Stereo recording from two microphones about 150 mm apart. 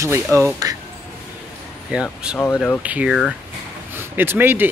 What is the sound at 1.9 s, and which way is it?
Speech, 5° right (ahead or behind).